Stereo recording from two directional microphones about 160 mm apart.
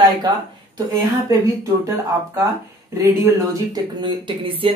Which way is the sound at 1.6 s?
20° right (ahead or behind).